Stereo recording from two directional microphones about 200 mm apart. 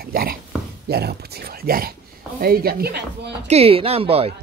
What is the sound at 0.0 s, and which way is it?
Speech, 50° right (ahead or behind).